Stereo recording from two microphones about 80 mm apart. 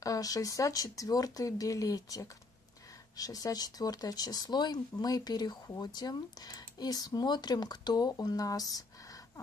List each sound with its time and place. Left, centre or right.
0.0 s speech: left